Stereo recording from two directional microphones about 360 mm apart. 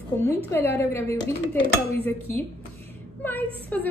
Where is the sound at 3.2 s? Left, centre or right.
Centre.